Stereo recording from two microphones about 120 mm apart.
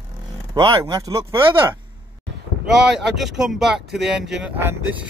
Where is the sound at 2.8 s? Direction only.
5° right (ahead or behind).